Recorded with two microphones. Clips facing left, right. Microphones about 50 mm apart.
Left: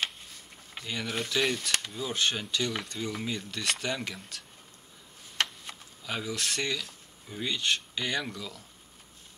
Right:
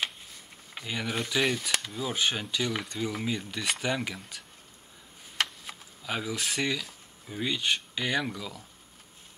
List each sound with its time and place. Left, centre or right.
0.7 s speech: centre